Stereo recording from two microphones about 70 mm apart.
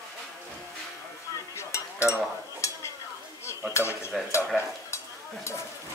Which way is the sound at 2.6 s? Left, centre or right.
Left.